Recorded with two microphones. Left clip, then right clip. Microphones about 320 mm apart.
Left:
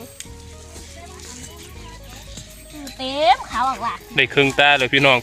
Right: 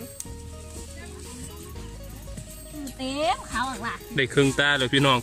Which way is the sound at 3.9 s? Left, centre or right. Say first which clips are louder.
Left 7 dB; centre.